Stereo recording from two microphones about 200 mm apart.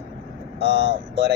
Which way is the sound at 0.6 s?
60° right (ahead or behind).